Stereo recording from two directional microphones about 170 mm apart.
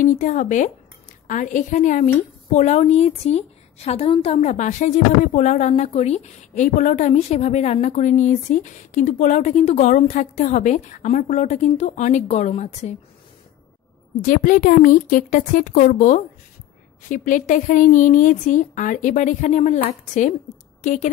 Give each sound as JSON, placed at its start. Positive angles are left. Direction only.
{"t": 0.0, "sound": "a woman's voice", "side_deg": 45}
{"t": 14.2, "sound": "a woman's voice", "side_deg": 50}